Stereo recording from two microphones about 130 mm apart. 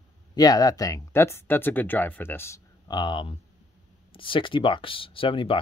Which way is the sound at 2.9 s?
35° left (ahead or behind).